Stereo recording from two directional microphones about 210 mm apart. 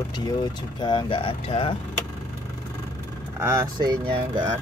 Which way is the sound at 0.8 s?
20° left (ahead or behind).